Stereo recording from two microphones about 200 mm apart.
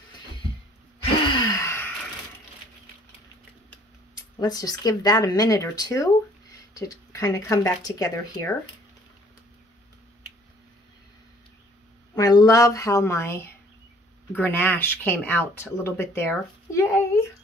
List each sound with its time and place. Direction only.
1.2 s gasp: 20° left (ahead or behind)
4.4 s speech: 20° left (ahead or behind)
12.2 s speech: 20° left (ahead or behind)